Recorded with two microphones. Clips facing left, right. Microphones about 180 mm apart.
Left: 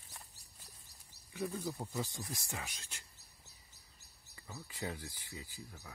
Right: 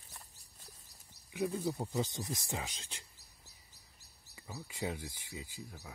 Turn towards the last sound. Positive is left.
turn(degrees=-20)  # may be behind; listen again after turning